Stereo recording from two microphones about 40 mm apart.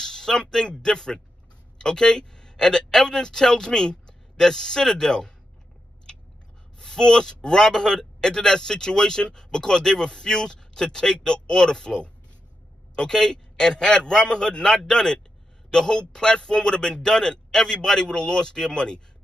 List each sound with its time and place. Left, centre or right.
0.0 s speech: centre
6.8 s a man's voice: centre